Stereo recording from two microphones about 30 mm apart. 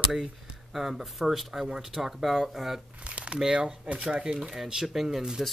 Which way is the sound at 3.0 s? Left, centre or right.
Right.